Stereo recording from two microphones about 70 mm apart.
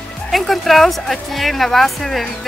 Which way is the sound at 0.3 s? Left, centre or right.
Centre.